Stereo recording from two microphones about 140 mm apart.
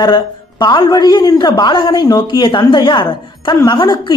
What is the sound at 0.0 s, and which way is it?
A woman's voice, 30° left (ahead or behind).